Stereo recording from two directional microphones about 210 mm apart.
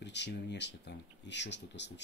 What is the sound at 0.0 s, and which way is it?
Speech, 55° left (ahead or behind).